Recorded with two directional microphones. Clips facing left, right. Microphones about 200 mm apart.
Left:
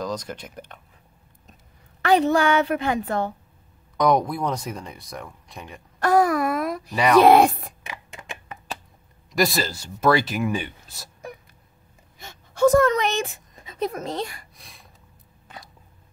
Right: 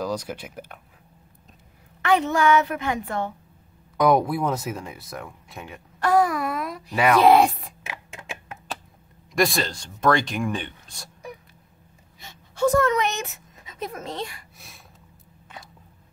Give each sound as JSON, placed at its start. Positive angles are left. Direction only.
{"t": 0.0, "sound": "speech", "side_deg": -10}
{"t": 2.0, "sound": "a woman's voice", "side_deg": 35}
{"t": 3.9, "sound": "speech", "side_deg": -5}
{"t": 5.9, "sound": "a sound", "side_deg": 45}
{"t": 6.9, "sound": "speech", "side_deg": -5}
{"t": 7.2, "sound": "speech", "side_deg": 45}
{"t": 7.8, "sound": "a sound", "side_deg": -5}
{"t": 9.3, "sound": "speech", "side_deg": 0}
{"t": 12.2, "sound": "speech", "side_deg": 45}
{"t": 14.6, "sound": "gasp", "side_deg": 0}